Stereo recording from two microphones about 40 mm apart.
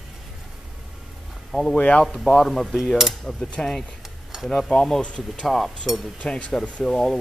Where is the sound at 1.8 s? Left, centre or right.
Left.